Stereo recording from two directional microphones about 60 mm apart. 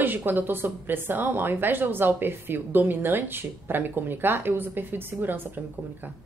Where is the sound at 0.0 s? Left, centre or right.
Right.